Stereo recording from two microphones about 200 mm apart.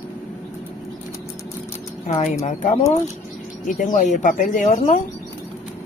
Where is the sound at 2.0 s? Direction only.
35° left (ahead or behind).